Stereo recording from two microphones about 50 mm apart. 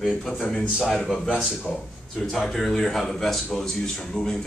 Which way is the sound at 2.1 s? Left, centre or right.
Centre.